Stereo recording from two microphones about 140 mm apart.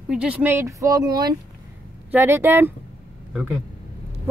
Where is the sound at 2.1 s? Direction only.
15° right (ahead or behind).